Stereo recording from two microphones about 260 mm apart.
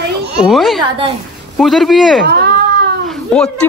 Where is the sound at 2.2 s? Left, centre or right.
Right.